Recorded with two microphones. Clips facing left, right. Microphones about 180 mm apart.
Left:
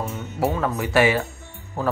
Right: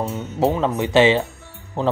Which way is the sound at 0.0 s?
20° right (ahead or behind).